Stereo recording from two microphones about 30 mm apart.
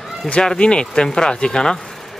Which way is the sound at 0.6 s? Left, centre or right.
Left.